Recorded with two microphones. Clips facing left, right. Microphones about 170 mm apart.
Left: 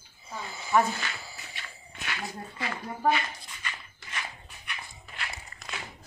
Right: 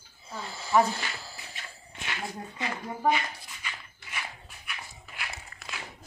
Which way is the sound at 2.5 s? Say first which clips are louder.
Even; 15° right (ahead or behind).